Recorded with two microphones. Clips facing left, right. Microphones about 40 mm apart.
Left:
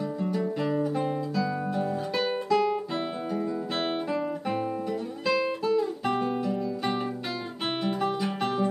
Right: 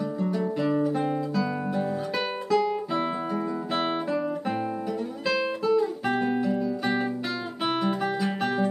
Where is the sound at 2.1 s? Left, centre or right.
Centre.